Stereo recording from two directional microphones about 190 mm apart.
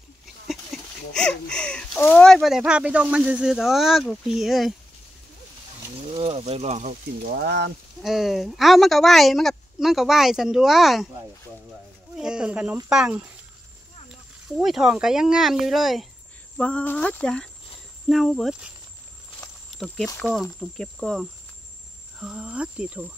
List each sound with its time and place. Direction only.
1.1 s speech: 5° left (ahead or behind)
6.1 s speech: 30° right (ahead or behind)
7.3 s speech: 65° right (ahead or behind)
8.0 s speech: centre (ahead or behind)
12.2 s speech: 5° right (ahead or behind)
14.6 s speech: centre (ahead or behind)
20.2 s speech: 5° left (ahead or behind)